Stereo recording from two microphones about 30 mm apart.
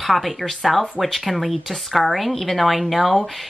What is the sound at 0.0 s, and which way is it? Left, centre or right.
A woman's voice, centre.